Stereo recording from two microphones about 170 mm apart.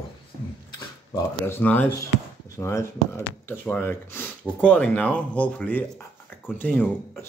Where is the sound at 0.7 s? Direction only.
15° left (ahead or behind).